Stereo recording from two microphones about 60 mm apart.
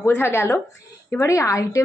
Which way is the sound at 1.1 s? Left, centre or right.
Left.